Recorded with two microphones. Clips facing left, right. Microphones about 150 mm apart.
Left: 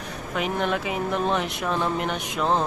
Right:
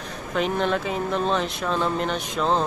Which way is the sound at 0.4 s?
10° left (ahead or behind).